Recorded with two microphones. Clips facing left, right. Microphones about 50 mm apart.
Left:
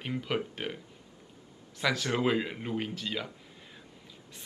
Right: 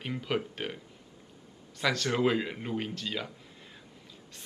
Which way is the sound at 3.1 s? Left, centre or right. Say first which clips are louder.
Even; centre.